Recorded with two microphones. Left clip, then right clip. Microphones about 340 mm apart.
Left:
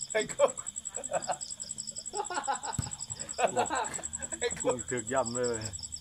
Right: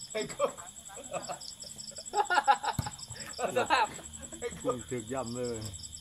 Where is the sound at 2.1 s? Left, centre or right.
Right.